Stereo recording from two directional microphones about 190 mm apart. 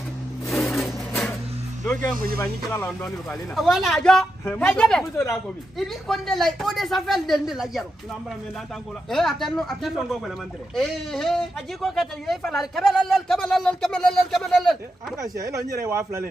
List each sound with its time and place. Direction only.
0.5 s a sound: centre (ahead or behind)
2.0 s speech: 45° right (ahead or behind)
2.4 s speech: 10° left (ahead or behind)
5.8 s speech: centre (ahead or behind)
9.1 s speech: centre (ahead or behind)
15.3 s a man's voice: 15° right (ahead or behind)